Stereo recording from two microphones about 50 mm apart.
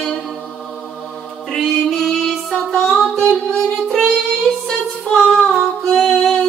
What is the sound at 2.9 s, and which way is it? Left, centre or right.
Music, centre.